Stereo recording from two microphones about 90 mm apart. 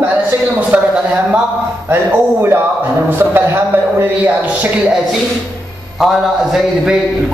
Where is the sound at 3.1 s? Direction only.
25° right (ahead or behind).